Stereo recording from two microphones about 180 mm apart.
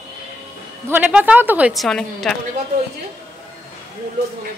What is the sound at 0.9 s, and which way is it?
A woman's voice, 10° right (ahead or behind).